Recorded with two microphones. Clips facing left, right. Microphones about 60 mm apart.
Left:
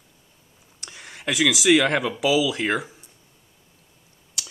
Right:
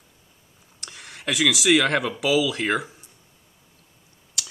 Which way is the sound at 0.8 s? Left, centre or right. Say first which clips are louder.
Left 1 dB; centre.